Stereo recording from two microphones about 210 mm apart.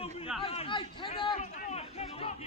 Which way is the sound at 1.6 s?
30° left (ahead or behind).